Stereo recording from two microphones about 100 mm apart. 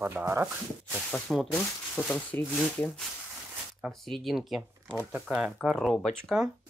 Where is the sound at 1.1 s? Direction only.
5° left (ahead or behind).